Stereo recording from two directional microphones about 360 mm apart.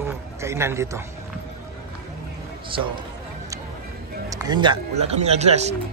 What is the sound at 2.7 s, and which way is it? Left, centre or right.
Speech, centre.